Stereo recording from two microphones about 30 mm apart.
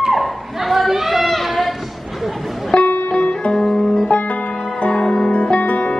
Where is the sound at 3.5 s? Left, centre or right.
Centre.